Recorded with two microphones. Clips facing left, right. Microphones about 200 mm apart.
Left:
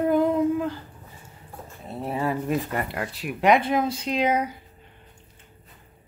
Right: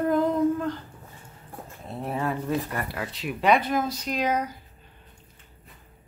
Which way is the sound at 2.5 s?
20° left (ahead or behind).